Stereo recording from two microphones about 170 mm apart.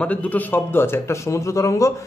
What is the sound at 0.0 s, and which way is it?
A man's voice, 10° left (ahead or behind).